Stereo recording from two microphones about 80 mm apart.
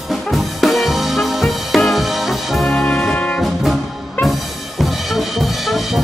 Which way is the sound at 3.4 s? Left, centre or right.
Centre.